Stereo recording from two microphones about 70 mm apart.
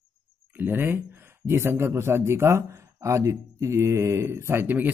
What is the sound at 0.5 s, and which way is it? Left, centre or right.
Speech, right.